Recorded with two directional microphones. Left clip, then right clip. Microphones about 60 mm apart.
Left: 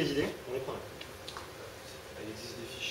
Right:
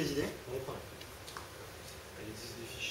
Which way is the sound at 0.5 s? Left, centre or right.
Right.